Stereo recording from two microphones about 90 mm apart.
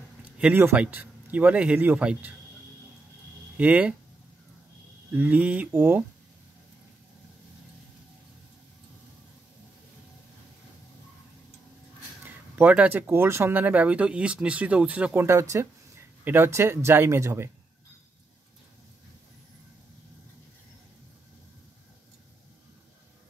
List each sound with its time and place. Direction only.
0.4 s speech: 20° right (ahead or behind)
3.5 s speech: 15° right (ahead or behind)
5.1 s speech: 15° right (ahead or behind)
12.5 s speech: 20° right (ahead or behind)
15.1 s speech: 30° right (ahead or behind)